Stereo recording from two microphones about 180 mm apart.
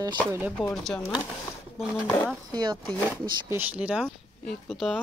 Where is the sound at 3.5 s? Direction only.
10° right (ahead or behind).